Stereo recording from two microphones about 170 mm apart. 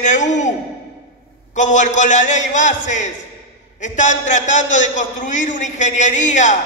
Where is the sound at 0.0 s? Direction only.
45° left (ahead or behind).